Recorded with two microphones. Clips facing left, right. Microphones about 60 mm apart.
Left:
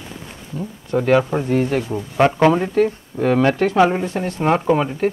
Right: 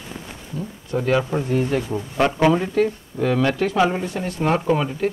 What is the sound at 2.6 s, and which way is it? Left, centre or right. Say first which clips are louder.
Speech: left 3 dB; left.